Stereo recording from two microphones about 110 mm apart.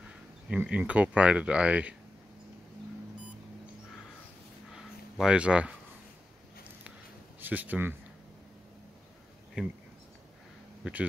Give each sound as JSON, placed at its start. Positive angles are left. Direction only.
{"t": 0.5, "sound": "speech", "side_deg": -10}
{"t": 4.7, "sound": "a sound", "side_deg": -5}
{"t": 7.3, "sound": "speech", "side_deg": -15}
{"t": 9.6, "sound": "speech", "side_deg": -10}
{"t": 10.8, "sound": "speech", "side_deg": -15}